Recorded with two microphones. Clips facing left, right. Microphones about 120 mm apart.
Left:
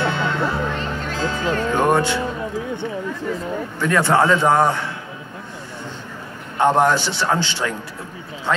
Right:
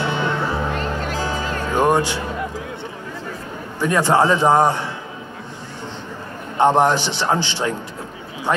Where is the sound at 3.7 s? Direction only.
15° right (ahead or behind).